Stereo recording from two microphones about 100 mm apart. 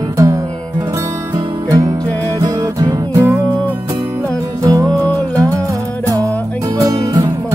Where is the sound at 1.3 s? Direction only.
40° right (ahead or behind).